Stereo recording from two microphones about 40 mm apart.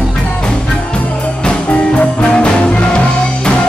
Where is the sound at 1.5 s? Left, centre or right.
Left.